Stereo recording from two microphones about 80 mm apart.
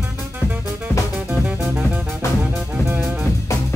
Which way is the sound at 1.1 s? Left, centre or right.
Centre.